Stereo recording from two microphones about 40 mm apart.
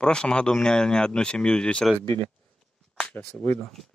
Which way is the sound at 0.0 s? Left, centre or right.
Left.